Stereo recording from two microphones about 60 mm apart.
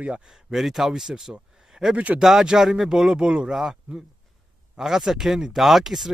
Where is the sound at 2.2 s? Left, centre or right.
Centre.